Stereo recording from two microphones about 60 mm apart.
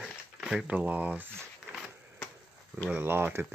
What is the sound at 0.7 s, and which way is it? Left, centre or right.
Speech, right.